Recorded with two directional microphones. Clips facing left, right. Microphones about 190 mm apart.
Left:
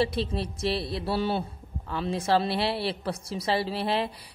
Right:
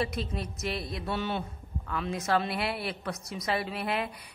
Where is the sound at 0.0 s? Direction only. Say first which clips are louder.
Left 5 dB; 30° left (ahead or behind).